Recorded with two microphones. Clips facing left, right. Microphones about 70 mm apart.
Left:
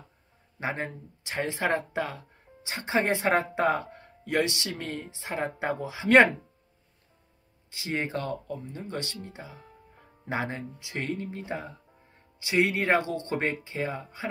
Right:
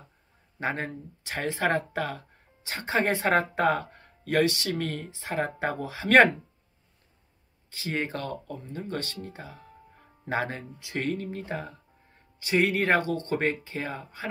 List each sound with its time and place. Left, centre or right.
0.6 s speech: centre
7.7 s speech: centre
12.9 s speech: centre